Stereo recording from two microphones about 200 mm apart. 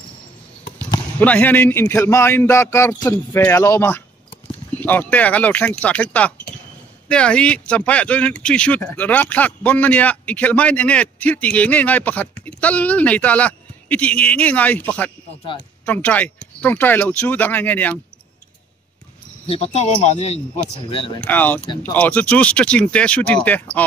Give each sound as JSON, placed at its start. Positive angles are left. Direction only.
{"t": 1.2, "sound": "speech", "side_deg": 10}
{"t": 15.8, "sound": "speech", "side_deg": 10}
{"t": 19.4, "sound": "speech", "side_deg": 30}
{"t": 21.3, "sound": "speech", "side_deg": 10}